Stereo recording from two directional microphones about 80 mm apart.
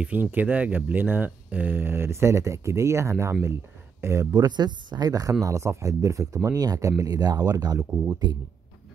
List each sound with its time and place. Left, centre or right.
0.0 s speech: right
4.3 s speech: right
5.4 s speech: right
7.2 s speech: right